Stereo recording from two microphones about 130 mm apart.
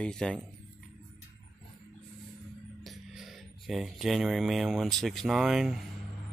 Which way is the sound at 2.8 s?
Centre (ahead or behind).